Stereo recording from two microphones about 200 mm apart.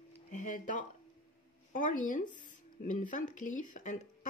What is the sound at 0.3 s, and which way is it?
Speech, 40° left (ahead or behind).